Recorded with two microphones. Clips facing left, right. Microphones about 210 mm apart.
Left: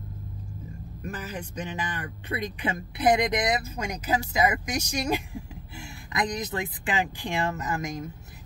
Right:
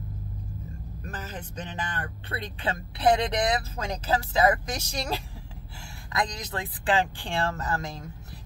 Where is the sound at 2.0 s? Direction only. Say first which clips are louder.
Left 3 dB; 15° left (ahead or behind).